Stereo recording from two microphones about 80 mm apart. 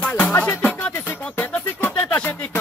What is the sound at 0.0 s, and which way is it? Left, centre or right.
Music, left.